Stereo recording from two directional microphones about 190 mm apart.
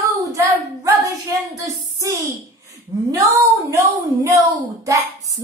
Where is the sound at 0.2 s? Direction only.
15° right (ahead or behind).